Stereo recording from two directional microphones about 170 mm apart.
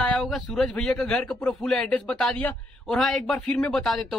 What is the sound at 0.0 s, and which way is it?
Speech, centre (ahead or behind).